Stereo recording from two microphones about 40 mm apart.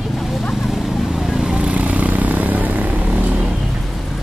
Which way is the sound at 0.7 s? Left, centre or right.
Centre.